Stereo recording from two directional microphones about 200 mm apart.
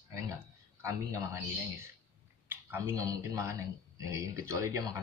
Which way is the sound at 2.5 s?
10° right (ahead or behind).